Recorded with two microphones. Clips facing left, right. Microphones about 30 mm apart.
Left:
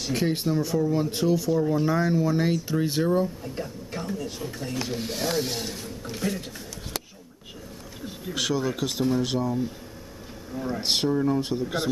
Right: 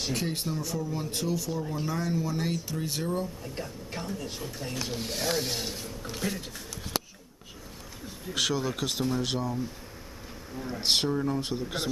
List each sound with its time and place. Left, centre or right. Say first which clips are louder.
0.1 s a man's voice: left 7 dB; centre
3.5 s speech: left 3 dB; centre
8.3 s speech: left 2 dB; centre
10.5 s speech: left 1 dB; centre